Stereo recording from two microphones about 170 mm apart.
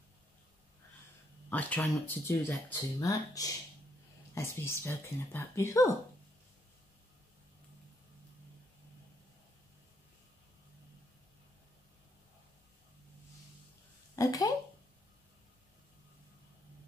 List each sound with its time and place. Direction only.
1.5 s speech: 10° left (ahead or behind)
14.1 s speech: 20° left (ahead or behind)